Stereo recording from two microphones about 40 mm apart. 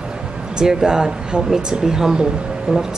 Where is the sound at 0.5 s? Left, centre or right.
Centre.